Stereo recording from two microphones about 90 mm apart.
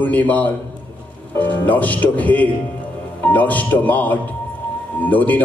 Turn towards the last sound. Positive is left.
turn(degrees=20)  # may be behind; listen again after turning